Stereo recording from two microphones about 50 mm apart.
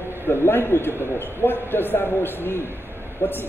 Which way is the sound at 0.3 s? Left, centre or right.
Left.